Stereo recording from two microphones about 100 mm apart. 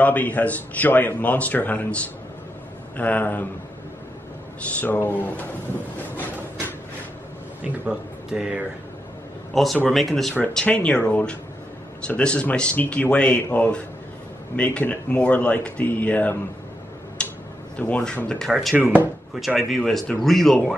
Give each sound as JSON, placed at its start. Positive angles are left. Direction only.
{"t": 0.0, "sound": "a man's voice", "side_deg": 15}
{"t": 3.0, "sound": "a man's voice", "side_deg": 15}
{"t": 4.7, "sound": "a man's voice", "side_deg": 15}
{"t": 5.9, "sound": "a sound", "side_deg": 20}
{"t": 7.6, "sound": "a man's voice", "side_deg": -10}
{"t": 10.4, "sound": "a man's voice", "side_deg": 10}
{"t": 17.2, "sound": "tick-tock", "side_deg": 10}
{"t": 17.7, "sound": "a man's voice", "side_deg": 15}
{"t": 18.5, "sound": "speech", "side_deg": 0}
{"t": 18.8, "sound": "speech", "side_deg": -15}
{"t": 19.3, "sound": "speech", "side_deg": 0}